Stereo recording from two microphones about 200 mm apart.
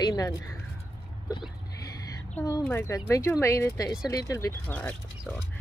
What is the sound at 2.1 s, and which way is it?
Speech, 15° left (ahead or behind).